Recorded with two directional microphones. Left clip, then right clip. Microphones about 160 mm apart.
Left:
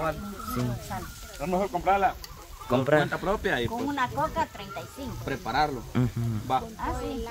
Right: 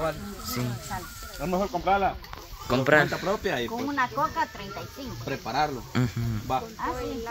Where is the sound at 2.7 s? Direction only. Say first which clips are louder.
Right 2 dB; 5° left (ahead or behind).